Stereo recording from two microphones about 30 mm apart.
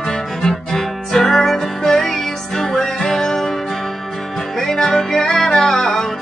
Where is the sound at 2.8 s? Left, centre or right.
Centre.